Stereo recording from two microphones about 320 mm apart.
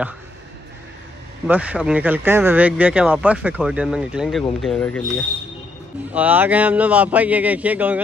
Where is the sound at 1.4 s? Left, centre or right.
Centre.